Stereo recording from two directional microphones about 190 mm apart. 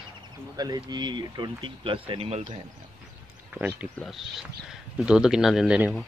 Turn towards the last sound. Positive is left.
turn(degrees=-5)  # may be behind; listen again after turning